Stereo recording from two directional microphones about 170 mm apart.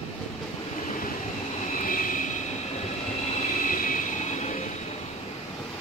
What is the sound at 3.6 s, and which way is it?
Vehicle, 50° left (ahead or behind).